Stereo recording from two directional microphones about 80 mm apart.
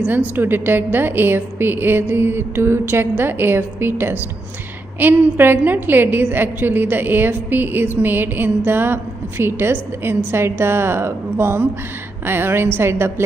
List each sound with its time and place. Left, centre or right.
0.4 s a woman's voice: right